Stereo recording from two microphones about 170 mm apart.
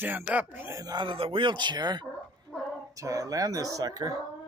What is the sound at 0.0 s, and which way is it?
Speech, 10° right (ahead or behind).